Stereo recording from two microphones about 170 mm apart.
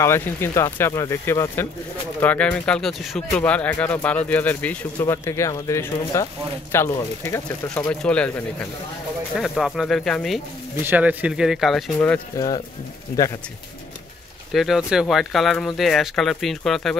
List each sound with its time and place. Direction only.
0.0 s speech: 15° left (ahead or behind)
10.8 s speech: 10° right (ahead or behind)
12.4 s speech: 25° left (ahead or behind)
14.5 s speech: centre (ahead or behind)